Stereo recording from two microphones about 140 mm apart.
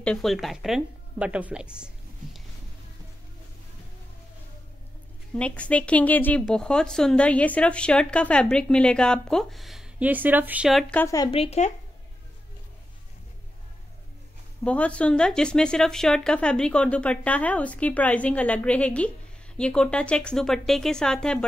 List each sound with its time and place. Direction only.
0.0 s a woman's voice: 5° left (ahead or behind)
5.3 s speech: 10° left (ahead or behind); by 10.7 s 10° right (ahead or behind)
10.7 s a woman's voice: centre (ahead or behind)
11.0 s speech: 20° left (ahead or behind)
11.3 s speech: 45° left (ahead or behind)
14.6 s speech: 10° left (ahead or behind)